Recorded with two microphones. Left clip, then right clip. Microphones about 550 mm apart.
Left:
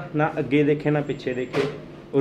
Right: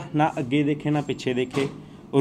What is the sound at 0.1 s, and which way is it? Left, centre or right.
Speech, right.